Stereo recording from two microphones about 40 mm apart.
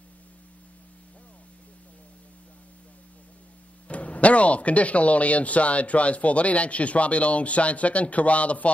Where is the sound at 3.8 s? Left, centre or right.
Left.